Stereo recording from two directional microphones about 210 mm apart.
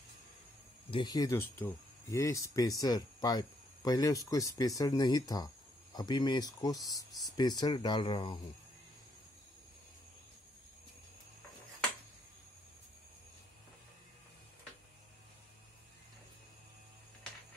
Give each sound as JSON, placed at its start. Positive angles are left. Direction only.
{"t": 0.8, "sound": "speech", "side_deg": 20}